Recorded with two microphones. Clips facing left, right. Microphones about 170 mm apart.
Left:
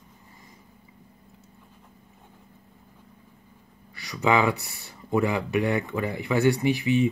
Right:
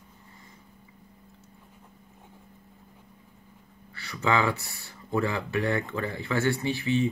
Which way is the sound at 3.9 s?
15° left (ahead or behind).